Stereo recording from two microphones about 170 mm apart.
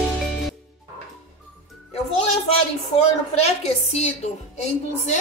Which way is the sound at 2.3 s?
40° left (ahead or behind).